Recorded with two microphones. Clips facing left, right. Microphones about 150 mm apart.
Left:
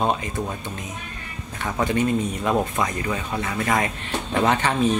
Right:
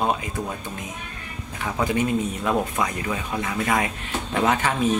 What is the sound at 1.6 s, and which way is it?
Speech, 10° right (ahead or behind).